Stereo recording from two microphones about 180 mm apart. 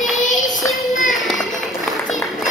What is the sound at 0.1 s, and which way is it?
Child singing, 45° left (ahead or behind).